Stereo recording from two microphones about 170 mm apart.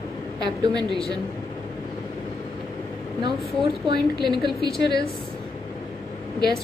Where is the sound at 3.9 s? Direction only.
25° right (ahead or behind).